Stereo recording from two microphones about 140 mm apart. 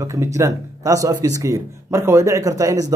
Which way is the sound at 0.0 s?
20° right (ahead or behind).